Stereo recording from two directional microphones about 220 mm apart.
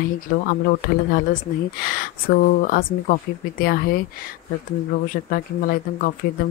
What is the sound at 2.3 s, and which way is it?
Speech, 40° left (ahead or behind).